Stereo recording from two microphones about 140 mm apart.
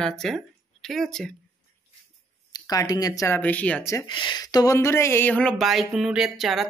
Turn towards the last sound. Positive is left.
turn(degrees=0)  # may be behind; listen again after turning